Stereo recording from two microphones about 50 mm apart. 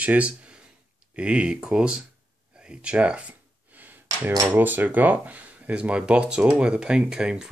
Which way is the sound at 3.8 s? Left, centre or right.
Right.